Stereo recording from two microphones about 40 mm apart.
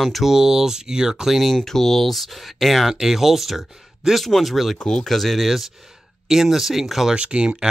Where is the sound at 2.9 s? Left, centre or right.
Centre.